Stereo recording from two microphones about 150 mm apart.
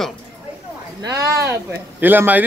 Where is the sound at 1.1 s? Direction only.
20° right (ahead or behind).